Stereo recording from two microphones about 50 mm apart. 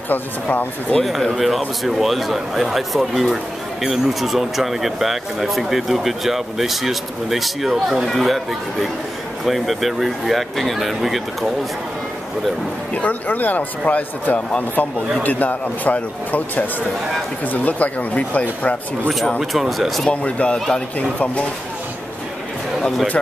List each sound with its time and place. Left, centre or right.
0.1 s speech: left
0.9 s speech: centre
1.3 s speech: centre
9.4 s speech: centre
12.9 s speech: left
19.5 s speech: centre
20.1 s speech: left
21.0 s speech: left